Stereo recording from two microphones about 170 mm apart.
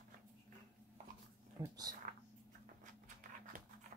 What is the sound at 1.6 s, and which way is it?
Speech, 20° right (ahead or behind).